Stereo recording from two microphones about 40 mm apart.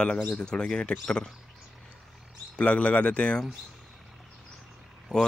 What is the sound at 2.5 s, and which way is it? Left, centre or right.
Speech, left.